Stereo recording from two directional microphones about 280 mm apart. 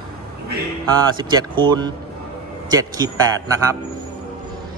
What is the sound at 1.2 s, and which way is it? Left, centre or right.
A man's voice, centre.